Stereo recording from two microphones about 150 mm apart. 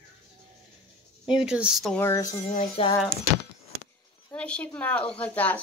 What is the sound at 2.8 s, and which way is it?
Speech, 40° left (ahead or behind).